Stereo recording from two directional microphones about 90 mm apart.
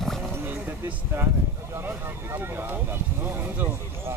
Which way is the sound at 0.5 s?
20° right (ahead or behind).